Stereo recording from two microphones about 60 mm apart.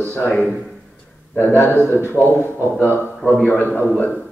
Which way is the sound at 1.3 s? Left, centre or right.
Left.